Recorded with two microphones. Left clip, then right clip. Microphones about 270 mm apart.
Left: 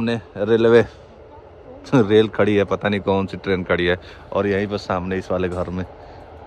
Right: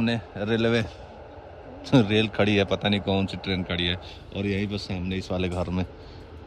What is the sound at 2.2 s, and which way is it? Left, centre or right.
Speech, centre.